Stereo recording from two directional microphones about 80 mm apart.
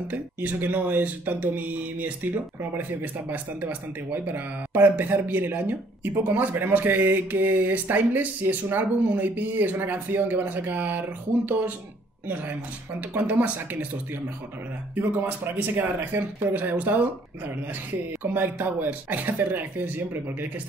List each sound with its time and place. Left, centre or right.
0.1 s speech: right
18.2 s speech: right